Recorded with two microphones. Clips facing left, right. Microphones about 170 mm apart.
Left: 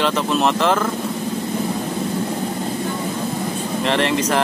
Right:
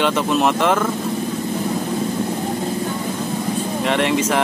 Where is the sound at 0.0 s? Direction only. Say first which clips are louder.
Right 1 dB; 5° right (ahead or behind).